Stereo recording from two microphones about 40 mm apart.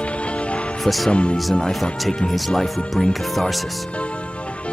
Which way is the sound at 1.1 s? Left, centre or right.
Left.